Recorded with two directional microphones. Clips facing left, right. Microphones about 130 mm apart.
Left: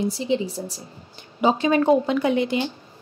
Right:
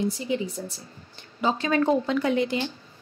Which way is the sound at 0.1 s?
30° left (ahead or behind).